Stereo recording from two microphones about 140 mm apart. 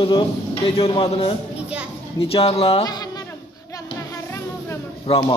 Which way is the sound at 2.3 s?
40° left (ahead or behind).